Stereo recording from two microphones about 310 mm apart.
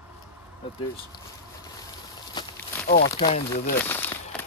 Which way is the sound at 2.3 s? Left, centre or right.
Centre.